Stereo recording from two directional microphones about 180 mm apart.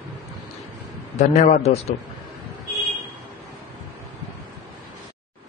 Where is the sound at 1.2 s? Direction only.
35° left (ahead or behind).